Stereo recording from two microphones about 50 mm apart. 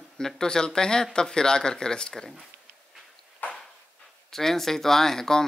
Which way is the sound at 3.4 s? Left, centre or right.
Left.